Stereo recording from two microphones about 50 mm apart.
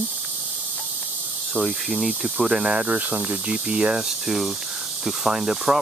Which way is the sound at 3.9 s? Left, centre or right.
Centre.